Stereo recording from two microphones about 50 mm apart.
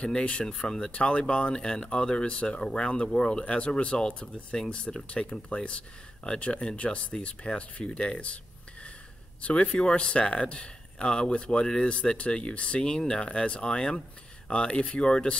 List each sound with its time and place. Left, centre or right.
0.0 s speech: left
0.9 s speech: left
9.4 s speech: left